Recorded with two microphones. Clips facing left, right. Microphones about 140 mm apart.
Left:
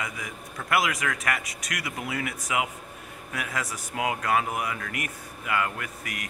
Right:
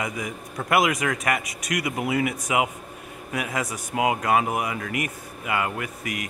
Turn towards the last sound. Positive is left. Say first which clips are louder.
# right 5 dB
turn(degrees=-10)  # may be behind; listen again after turning